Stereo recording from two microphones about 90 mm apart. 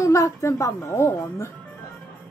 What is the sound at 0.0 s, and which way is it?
Speech, 35° left (ahead or behind).